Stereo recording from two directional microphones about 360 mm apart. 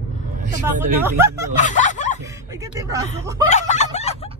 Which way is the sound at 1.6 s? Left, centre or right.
Centre.